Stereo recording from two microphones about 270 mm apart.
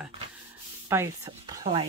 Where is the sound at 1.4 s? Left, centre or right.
Right.